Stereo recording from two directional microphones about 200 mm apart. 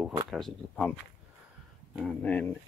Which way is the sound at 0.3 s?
5° left (ahead or behind).